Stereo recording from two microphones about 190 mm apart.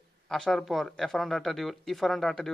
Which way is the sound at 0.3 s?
Centre (ahead or behind).